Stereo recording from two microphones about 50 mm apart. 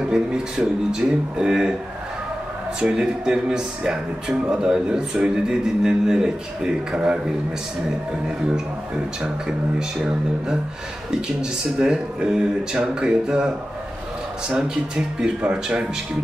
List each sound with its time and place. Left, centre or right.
0.1 s speech: centre
2.8 s speech: centre
9.2 s speech: centre
11.8 s speech: centre
14.5 s speech: centre
15.4 s speech: right